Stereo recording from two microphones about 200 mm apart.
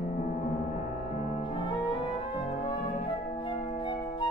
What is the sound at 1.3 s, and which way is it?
Music, 25° left (ahead or behind).